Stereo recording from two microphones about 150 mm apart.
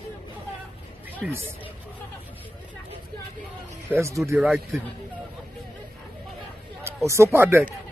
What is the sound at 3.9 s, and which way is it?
Speech, 20° right (ahead or behind).